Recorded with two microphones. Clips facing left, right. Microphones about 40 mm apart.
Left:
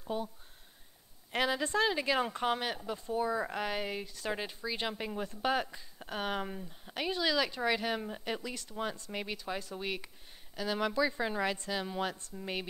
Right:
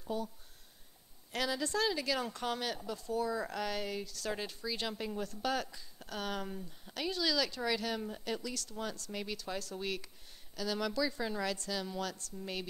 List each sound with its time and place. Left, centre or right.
0.1 s speech: left
1.3 s speech: left